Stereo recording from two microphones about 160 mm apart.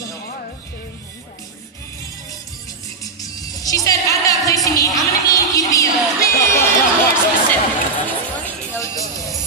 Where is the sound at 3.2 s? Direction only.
20° left (ahead or behind).